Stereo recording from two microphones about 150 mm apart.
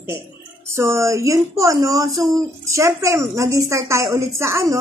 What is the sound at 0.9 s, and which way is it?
Speech, 20° right (ahead or behind).